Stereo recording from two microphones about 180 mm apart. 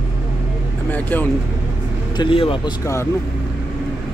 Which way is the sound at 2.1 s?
30° left (ahead or behind).